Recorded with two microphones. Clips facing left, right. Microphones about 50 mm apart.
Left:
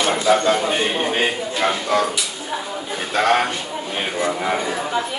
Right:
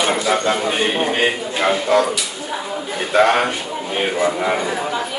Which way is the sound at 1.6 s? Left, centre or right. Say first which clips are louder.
Right 4 dB; centre.